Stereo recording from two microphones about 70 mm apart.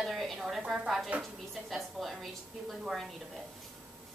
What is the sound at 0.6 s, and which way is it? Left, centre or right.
Speech, centre.